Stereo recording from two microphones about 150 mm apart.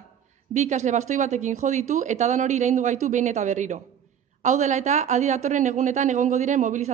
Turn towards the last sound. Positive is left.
turn(degrees=-55)  # may be behind; listen again after turning